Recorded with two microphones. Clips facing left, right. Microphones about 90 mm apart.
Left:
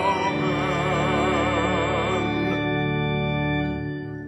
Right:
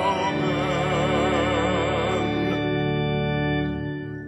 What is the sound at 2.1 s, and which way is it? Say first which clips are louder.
Music: even; 40° left (ahead or behind).